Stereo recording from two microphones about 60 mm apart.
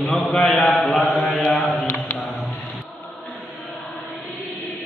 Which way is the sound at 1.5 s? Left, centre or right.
Left.